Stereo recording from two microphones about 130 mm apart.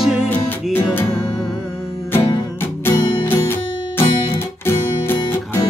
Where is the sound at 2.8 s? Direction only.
15° left (ahead or behind).